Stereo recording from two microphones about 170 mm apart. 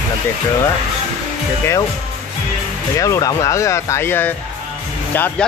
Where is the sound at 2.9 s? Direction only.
20° left (ahead or behind).